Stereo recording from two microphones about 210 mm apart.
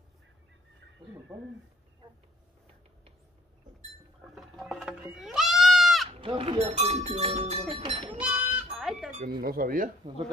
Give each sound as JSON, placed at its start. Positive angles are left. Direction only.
{"t": 1.3, "sound": "speech", "side_deg": -15}
{"t": 4.4, "sound": "goat", "side_deg": 0}
{"t": 6.0, "sound": "speech", "side_deg": -25}
{"t": 8.2, "sound": "sheep", "side_deg": -5}
{"t": 9.4, "sound": "speech", "side_deg": -45}